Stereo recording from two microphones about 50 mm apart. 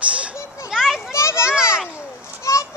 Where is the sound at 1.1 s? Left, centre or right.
Left.